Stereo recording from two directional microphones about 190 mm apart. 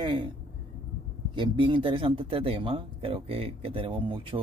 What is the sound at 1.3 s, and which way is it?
Speech, 25° right (ahead or behind).